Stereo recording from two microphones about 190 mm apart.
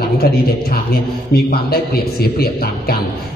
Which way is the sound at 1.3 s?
55° left (ahead or behind).